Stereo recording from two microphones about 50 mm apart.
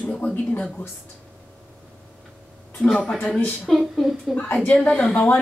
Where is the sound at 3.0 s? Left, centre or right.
Centre.